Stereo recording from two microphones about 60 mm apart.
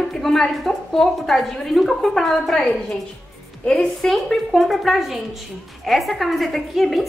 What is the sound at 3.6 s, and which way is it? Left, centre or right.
Speech, centre.